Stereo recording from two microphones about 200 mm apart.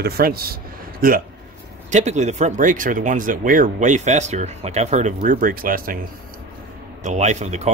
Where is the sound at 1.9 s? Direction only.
35° right (ahead or behind).